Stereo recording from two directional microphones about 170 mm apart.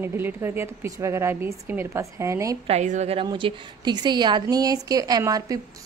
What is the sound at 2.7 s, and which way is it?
Speech, 40° right (ahead or behind).